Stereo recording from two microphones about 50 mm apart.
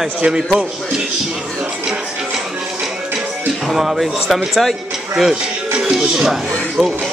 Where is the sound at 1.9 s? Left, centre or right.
Centre.